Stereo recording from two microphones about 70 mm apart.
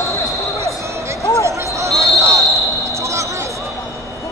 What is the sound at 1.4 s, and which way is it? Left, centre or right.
Basketball bounce, right.